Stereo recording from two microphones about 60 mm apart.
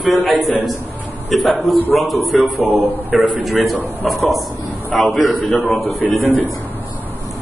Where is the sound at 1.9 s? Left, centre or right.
Centre.